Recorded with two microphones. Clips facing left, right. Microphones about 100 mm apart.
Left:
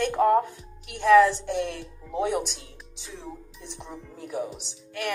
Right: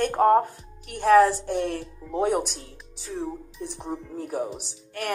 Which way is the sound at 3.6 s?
45° right (ahead or behind).